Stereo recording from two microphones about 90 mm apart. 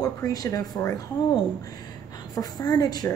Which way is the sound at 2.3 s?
45° left (ahead or behind).